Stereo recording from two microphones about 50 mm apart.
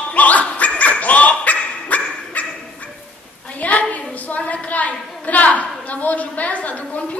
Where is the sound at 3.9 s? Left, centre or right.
Left.